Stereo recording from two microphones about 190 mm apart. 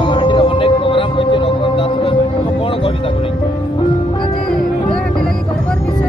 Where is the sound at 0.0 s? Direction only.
25° left (ahead or behind).